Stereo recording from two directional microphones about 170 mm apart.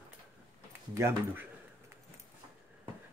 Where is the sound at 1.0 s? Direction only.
15° right (ahead or behind).